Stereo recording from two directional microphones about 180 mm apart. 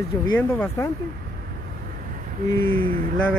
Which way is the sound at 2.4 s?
10° left (ahead or behind).